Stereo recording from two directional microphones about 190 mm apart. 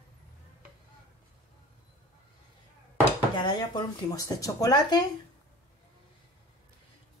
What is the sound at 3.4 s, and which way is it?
Speech, 20° left (ahead or behind).